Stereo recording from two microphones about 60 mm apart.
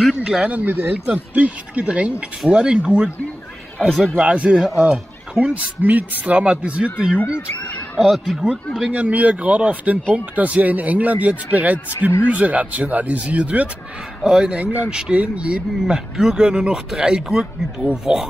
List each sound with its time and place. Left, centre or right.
0.2 s speech: centre
2.4 s speech: centre
3.8 s speech: centre
4.2 s speech: centre
4.5 s speech: centre
5.5 s speech: right
8.0 s speech: centre
8.9 s speech: right